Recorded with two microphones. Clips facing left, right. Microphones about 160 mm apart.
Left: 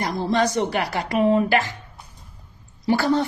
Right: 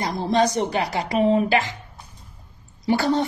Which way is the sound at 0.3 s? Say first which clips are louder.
Right 1 dB; 20° right (ahead or behind).